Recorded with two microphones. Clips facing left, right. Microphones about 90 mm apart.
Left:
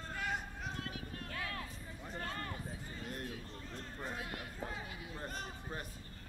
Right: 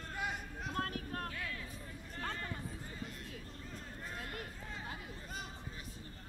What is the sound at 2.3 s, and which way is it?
Run, 50° left (ahead or behind).